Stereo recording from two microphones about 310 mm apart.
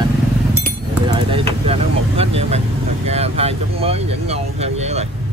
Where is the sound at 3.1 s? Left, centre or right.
Centre.